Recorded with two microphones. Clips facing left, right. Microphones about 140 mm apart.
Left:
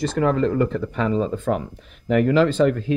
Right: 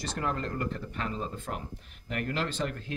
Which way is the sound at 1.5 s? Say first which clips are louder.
Left 17 dB; 90° left.